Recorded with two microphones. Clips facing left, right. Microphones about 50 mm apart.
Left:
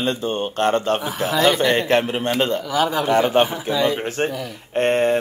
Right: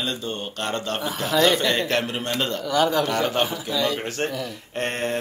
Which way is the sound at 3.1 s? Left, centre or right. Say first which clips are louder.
Left 6 dB; left.